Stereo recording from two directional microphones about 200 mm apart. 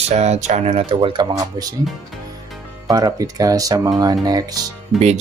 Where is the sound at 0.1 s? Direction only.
35° right (ahead or behind); by 1.8 s 20° right (ahead or behind).